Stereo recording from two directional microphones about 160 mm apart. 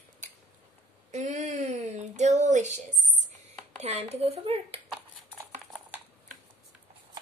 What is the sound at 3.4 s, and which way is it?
Speech, 45° right (ahead or behind).